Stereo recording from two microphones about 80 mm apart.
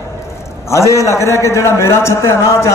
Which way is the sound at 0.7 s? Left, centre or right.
Left.